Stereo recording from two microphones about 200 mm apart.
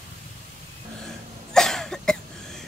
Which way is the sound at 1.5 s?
Centre (ahead or behind).